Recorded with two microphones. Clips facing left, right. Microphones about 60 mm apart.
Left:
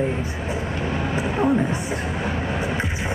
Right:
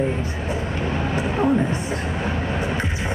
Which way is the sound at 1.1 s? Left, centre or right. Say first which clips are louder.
Even; left.